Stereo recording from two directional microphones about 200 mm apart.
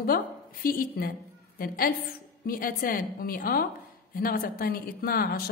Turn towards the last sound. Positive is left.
turn(degrees=50)  # may be behind; listen again after turning